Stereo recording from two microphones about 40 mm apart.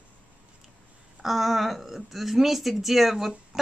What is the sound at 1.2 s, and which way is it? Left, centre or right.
Speech, centre.